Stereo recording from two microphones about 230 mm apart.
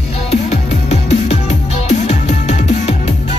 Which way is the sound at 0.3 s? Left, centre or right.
Left.